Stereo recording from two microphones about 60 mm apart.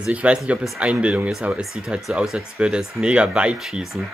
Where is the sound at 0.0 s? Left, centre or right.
Centre.